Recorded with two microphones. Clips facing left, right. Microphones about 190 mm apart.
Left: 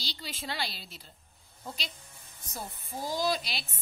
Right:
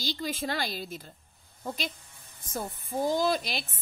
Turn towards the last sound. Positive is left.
turn(degrees=-50)  # may be behind; listen again after turning